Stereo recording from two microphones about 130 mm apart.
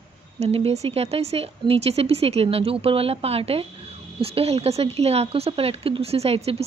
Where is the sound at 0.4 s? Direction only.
50° right (ahead or behind).